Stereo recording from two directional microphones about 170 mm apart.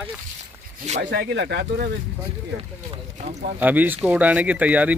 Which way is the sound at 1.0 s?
80° right.